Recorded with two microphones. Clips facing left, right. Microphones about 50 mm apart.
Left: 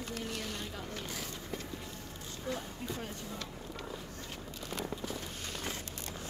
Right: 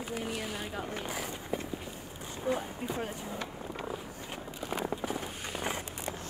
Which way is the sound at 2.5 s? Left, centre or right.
Right.